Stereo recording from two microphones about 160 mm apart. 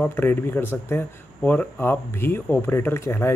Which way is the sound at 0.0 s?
10° left (ahead or behind).